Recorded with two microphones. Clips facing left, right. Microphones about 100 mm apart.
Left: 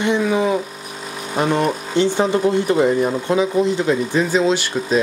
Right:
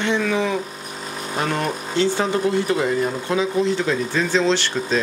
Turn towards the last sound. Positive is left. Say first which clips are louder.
# left 2 dB
turn(degrees=10)  # may be behind; listen again after turning